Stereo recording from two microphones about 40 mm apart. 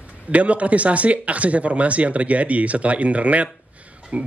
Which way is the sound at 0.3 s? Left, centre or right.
Right.